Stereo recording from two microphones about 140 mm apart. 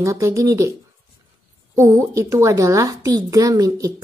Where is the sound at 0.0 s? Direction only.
20° right (ahead or behind).